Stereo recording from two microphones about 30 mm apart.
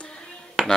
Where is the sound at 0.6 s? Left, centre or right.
Right.